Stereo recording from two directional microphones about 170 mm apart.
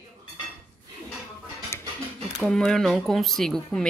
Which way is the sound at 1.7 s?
15° left (ahead or behind).